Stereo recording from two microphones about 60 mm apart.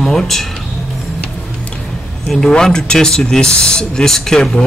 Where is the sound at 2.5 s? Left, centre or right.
Centre.